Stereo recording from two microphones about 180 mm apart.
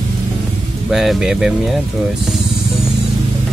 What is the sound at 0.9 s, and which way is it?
Speech, 5° right (ahead or behind).